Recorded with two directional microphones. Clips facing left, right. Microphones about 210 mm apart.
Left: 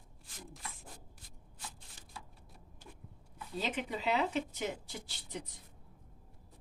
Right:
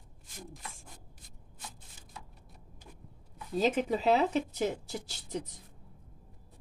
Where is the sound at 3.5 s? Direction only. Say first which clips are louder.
Right 9 dB; 40° right (ahead or behind).